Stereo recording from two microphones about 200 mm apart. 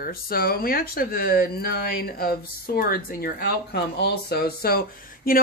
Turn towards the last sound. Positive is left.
turn(degrees=45)  # may be behind; listen again after turning